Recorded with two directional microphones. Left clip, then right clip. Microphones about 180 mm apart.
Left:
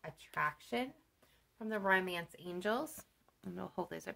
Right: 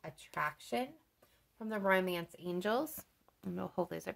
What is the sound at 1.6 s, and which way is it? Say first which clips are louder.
Speech: right 1 dB; 35° right (ahead or behind).